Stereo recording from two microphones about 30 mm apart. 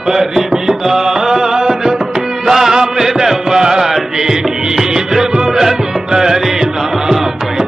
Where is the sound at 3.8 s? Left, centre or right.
Centre.